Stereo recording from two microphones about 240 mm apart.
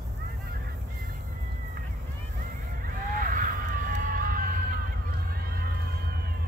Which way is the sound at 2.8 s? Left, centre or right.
Right.